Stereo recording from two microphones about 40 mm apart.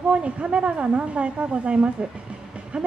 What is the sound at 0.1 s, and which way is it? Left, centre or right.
A woman's voice, right.